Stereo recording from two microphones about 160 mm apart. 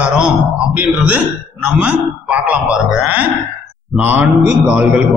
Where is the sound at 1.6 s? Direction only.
10° right (ahead or behind).